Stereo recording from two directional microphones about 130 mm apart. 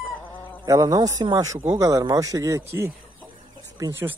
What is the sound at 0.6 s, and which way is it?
Speech, 25° right (ahead or behind).